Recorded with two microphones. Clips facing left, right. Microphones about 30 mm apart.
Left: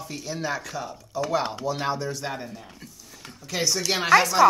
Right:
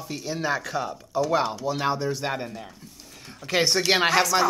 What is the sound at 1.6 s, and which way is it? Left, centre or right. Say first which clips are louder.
Speech: right 2 dB; centre.